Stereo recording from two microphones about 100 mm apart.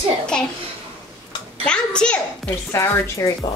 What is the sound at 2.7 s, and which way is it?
Speech, 30° left (ahead or behind).